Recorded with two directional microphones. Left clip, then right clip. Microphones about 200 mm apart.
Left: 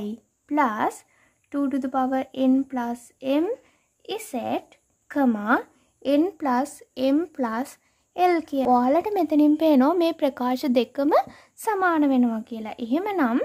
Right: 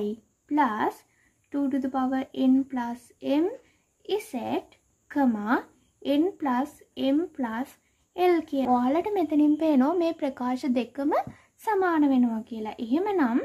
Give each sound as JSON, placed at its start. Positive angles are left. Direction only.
{"t": 0.0, "sound": "a woman's voice", "side_deg": 40}